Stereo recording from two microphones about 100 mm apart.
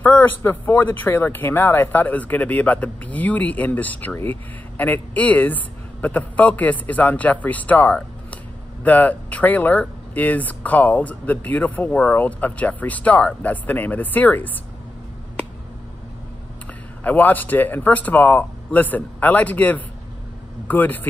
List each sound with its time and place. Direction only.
0.0 s speech: 20° left (ahead or behind)
17.0 s speech: 15° left (ahead or behind)